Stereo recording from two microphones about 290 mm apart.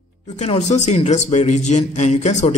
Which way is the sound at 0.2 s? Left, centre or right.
Left.